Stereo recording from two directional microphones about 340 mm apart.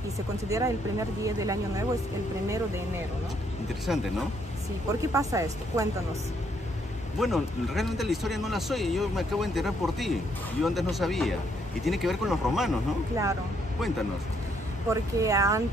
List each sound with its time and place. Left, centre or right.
0.5 s speech: centre
3.9 s speech: centre
5.1 s speech: centre
7.2 s speech: centre